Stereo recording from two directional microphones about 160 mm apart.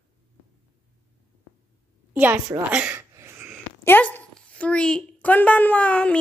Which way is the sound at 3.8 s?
15° left (ahead or behind).